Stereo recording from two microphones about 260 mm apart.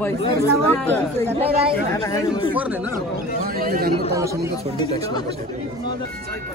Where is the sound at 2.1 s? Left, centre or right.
Centre.